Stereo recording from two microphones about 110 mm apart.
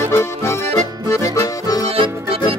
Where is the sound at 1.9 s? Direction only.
60° right (ahead or behind).